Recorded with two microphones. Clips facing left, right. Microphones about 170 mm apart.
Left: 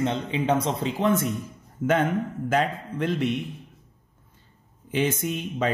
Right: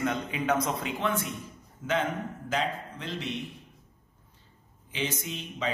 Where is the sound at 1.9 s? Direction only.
50° left (ahead or behind).